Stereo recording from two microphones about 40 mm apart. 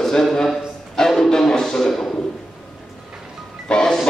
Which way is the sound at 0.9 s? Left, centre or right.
Centre.